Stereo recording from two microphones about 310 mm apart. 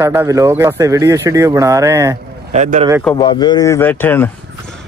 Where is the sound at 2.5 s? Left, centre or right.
Right.